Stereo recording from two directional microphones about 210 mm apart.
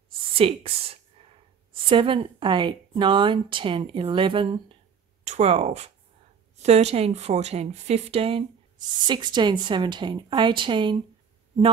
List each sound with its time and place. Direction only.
0.4 s speech: 25° right (ahead or behind)